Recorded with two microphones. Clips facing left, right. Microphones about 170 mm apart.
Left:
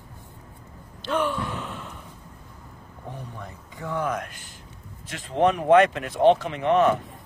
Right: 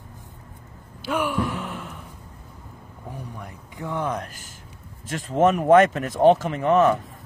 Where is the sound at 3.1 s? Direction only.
10° right (ahead or behind); by 6.8 s 40° right (ahead or behind).